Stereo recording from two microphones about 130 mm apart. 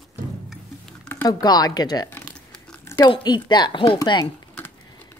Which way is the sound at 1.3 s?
30° left (ahead or behind).